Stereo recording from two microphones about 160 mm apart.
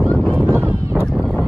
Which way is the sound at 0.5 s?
15° right (ahead or behind).